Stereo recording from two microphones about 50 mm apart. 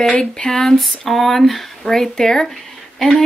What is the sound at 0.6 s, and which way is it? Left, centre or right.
Speech, centre.